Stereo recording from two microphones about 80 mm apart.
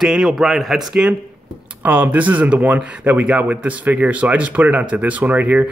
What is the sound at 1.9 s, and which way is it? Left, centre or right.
Speech, centre.